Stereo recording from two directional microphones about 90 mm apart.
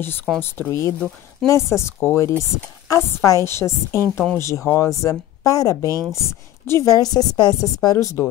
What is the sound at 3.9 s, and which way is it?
Speech, 30° right (ahead or behind).